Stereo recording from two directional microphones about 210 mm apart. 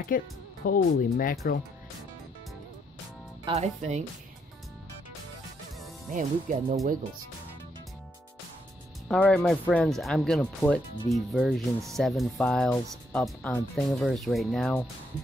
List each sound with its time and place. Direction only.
0.1 s speech: 40° left (ahead or behind)
3.4 s speech: 30° right (ahead or behind)
6.1 s speech: 35° right (ahead or behind)
9.1 s speech: 5° left (ahead or behind)